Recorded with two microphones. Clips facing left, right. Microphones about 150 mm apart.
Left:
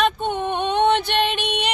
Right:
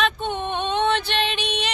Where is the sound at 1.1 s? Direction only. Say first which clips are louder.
Left 3 dB; 60° left (ahead or behind).